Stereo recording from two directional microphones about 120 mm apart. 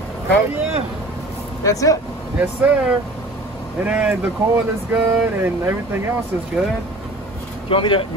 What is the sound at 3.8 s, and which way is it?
Speech, 10° right (ahead or behind).